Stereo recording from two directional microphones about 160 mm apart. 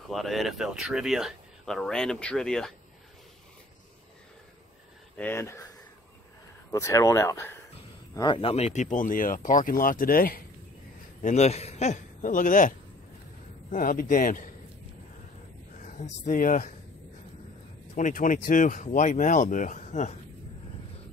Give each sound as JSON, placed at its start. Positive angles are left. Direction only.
{"t": 0.1, "sound": "speech", "side_deg": 0}
{"t": 5.1, "sound": "speech", "side_deg": 15}
{"t": 6.7, "sound": "speech", "side_deg": 20}
{"t": 8.1, "sound": "speech", "side_deg": 30}
{"t": 11.2, "sound": "speech", "side_deg": 45}
{"t": 15.8, "sound": "speech", "side_deg": 50}
{"t": 17.9, "sound": "speech", "side_deg": 55}